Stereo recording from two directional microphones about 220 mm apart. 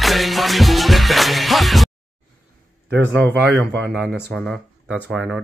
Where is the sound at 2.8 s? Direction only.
55° right (ahead or behind).